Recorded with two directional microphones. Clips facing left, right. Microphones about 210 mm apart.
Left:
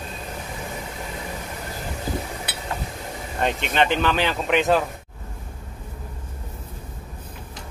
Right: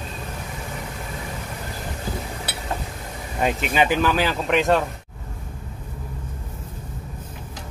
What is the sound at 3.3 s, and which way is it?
Speech, 5° right (ahead or behind).